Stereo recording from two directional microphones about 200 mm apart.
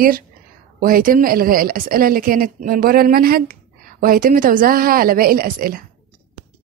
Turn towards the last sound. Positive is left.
turn(degrees=-45)  # may be behind; listen again after turning